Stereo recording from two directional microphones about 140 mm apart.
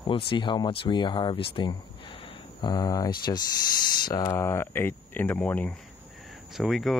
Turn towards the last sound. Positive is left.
turn(degrees=0)  # may be behind; listen again after turning